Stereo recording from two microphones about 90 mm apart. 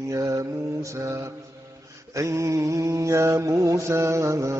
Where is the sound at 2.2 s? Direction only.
35° right (ahead or behind).